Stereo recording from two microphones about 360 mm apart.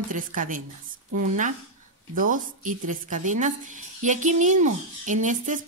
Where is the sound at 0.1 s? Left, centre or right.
Right.